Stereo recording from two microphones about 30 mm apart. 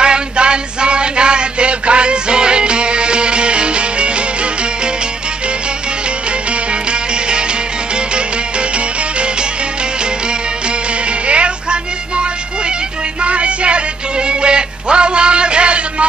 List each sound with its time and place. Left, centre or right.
0.0 s a sound: right
6.7 s music: right
11.2 s music: right